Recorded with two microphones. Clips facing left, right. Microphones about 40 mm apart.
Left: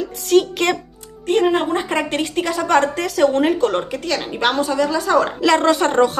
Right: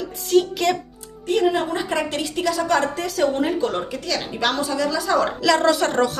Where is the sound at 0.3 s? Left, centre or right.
Left.